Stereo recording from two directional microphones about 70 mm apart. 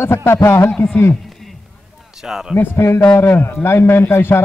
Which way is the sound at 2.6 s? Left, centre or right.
Left.